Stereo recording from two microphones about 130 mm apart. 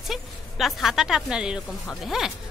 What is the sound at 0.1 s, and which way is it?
A woman's voice, centre (ahead or behind).